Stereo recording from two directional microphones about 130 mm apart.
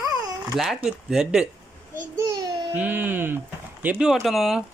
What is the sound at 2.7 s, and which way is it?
Speech, 15° right (ahead or behind).